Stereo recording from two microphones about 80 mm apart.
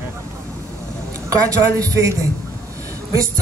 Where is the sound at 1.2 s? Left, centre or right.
Right.